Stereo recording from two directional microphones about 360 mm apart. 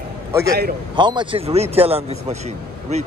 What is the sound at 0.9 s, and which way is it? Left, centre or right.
Speech, centre.